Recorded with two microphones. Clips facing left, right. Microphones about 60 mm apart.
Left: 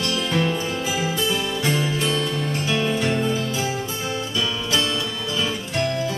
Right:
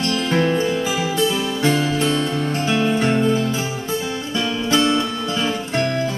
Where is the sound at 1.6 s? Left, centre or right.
Right.